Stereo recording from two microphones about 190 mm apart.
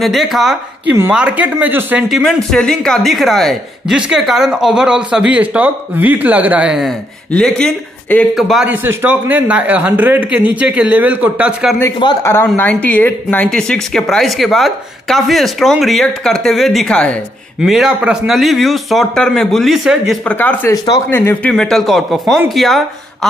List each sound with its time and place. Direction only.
0.0 s speech: centre (ahead or behind)
12.0 s a man's voice: 20° left (ahead or behind); by 22.8 s centre (ahead or behind)